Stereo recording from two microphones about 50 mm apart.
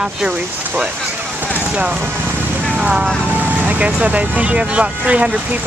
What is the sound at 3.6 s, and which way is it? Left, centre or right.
Speech, right.